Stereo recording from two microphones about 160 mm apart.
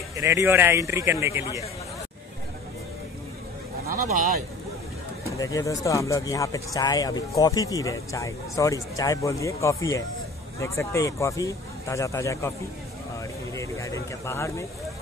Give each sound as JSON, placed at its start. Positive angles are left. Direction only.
{"t": 0.1, "sound": "a man's voice", "side_deg": -20}
{"t": 3.9, "sound": "speech", "side_deg": -60}
{"t": 5.2, "sound": "speech", "side_deg": 20}
{"t": 13.5, "sound": "a sound", "side_deg": 20}